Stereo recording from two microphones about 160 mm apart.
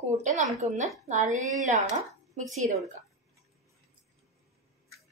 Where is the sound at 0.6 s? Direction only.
50° right (ahead or behind).